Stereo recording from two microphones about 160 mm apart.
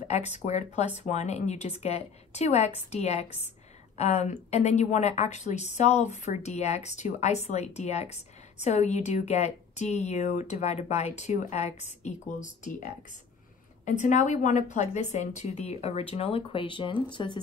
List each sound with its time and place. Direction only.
0.1 s a woman's voice: 45° left (ahead or behind)
13.8 s a woman's voice: 50° left (ahead or behind); by 17.4 s 30° left (ahead or behind)